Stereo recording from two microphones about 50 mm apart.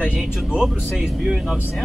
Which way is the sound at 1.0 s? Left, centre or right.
Centre.